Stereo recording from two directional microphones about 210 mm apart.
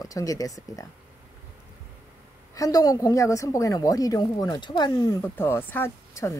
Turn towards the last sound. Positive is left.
turn(degrees=15)  # may be behind; listen again after turning